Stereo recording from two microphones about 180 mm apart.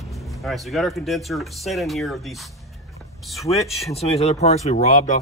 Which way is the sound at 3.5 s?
30° left (ahead or behind).